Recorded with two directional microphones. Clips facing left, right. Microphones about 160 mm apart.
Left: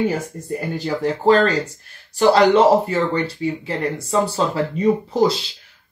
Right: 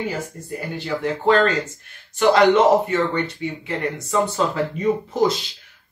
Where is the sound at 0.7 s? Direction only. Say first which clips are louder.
Left 1 dB; 35° left (ahead or behind).